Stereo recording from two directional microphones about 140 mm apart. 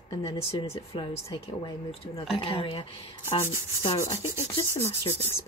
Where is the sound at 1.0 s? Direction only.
35° left (ahead or behind).